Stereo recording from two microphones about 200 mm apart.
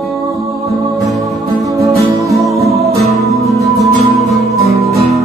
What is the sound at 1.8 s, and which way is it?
Music, 15° right (ahead or behind).